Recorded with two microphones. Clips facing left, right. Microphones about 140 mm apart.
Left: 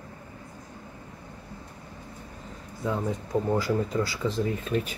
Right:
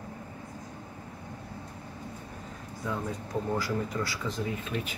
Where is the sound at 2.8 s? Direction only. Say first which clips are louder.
Left 5 dB; 20° left (ahead or behind).